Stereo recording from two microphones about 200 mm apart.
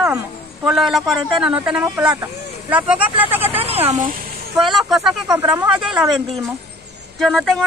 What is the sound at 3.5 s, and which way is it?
Speech, 30° right (ahead or behind).